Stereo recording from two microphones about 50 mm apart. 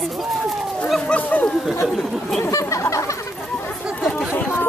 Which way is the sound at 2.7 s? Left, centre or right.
Left.